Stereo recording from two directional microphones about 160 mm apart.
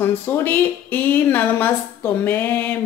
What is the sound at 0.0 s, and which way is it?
Speech, 15° left (ahead or behind).